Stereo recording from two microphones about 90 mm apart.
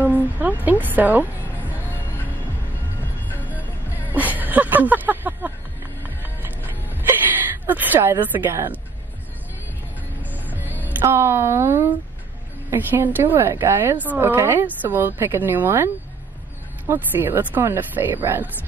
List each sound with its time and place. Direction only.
0.1 s speech: 20° right (ahead or behind)
3.3 s music: 20° left (ahead or behind)
3.9 s music: 20° right (ahead or behind)
7.6 s speech: 20° right (ahead or behind)
10.3 s music: 20° right (ahead or behind)
11.1 s speech: 30° right (ahead or behind)